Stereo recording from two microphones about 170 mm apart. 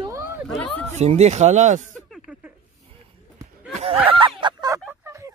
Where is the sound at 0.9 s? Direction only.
40° right (ahead or behind).